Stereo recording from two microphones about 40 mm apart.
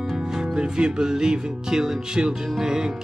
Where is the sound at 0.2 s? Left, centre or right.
Centre.